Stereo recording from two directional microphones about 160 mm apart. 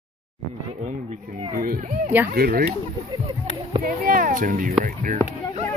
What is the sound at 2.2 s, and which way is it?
Speech, 70° right (ahead or behind).